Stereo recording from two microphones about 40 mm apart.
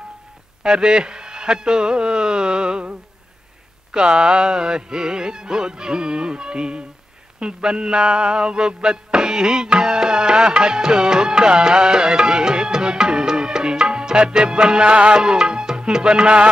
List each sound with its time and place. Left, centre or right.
0.7 s speech: right
3.9 s music: right